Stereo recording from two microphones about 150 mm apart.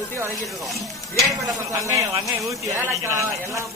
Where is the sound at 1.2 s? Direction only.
20° right (ahead or behind).